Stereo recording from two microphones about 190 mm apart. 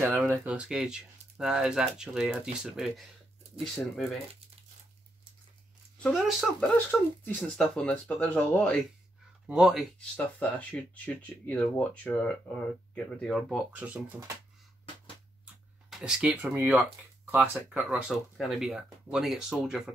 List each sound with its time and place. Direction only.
0.0 s speech: 10° right (ahead or behind)
3.9 s speech: centre (ahead or behind)
6.0 s speech: centre (ahead or behind)
15.9 s speech: 5° right (ahead or behind)